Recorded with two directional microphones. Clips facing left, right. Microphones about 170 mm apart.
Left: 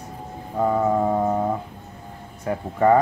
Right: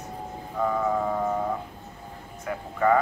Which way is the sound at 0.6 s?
35° left (ahead or behind).